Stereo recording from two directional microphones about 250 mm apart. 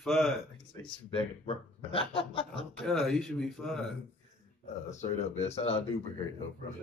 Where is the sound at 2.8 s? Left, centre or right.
Centre.